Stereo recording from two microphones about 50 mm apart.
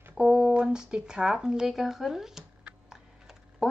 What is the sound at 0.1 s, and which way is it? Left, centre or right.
A woman's voice, centre.